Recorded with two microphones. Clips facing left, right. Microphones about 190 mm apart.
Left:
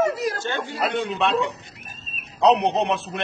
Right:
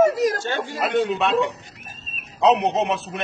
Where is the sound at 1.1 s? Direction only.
Centre (ahead or behind).